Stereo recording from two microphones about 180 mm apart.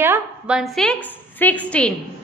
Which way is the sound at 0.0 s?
10° right (ahead or behind).